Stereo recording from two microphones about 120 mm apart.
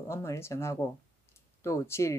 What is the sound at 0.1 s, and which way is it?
Speech, 20° left (ahead or behind).